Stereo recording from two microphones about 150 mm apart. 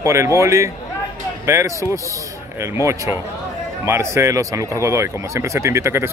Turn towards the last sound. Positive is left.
turn(degrees=-20)  # may be behind; listen again after turning